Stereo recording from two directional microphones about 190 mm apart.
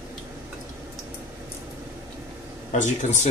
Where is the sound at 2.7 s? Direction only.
40° left (ahead or behind).